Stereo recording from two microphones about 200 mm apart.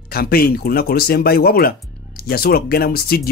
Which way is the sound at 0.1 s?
50° left (ahead or behind).